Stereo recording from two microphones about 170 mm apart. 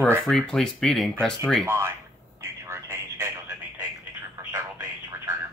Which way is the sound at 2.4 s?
15° right (ahead or behind).